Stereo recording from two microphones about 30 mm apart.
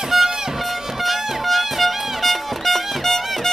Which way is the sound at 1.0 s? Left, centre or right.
Centre.